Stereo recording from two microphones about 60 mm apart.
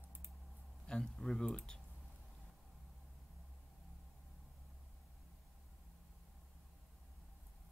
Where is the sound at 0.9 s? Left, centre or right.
Centre.